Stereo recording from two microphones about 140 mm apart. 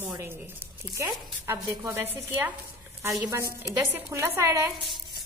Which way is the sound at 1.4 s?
20° right (ahead or behind).